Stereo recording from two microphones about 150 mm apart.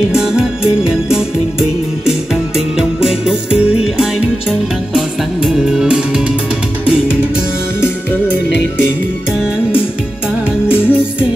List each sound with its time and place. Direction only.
0.1 s music: 5° right (ahead or behind)
10.7 s music: 15° left (ahead or behind)